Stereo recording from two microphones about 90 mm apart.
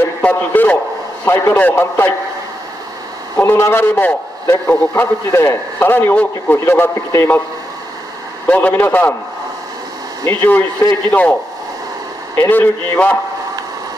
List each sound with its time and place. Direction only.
0.0 s a sound: 20° left (ahead or behind)
1.2 s a man's voice: 25° left (ahead or behind)
3.3 s a man's voice: 30° left (ahead or behind)
8.5 s a man's voice: 20° left (ahead or behind)
10.2 s a man's voice: 25° left (ahead or behind)
12.4 s a man's voice: 25° left (ahead or behind)